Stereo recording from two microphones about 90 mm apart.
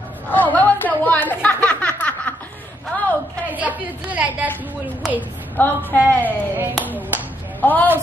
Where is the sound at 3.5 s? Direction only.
15° right (ahead or behind).